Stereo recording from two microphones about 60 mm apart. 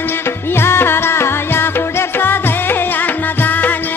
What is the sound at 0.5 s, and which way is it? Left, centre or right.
Music, left.